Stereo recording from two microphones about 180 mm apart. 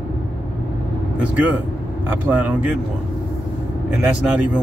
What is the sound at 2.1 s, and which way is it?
Speech, 10° right (ahead or behind).